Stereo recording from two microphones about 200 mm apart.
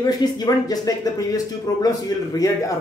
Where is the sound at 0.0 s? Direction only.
20° left (ahead or behind).